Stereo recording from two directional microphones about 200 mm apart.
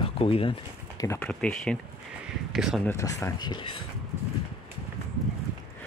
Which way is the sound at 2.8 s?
15° left (ahead or behind).